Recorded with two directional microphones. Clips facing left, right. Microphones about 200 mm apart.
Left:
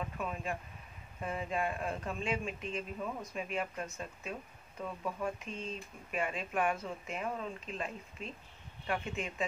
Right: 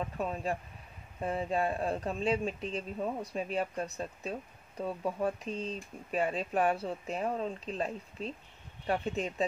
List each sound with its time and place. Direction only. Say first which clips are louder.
0.2 s speech: right 6 dB; 35° right (ahead or behind)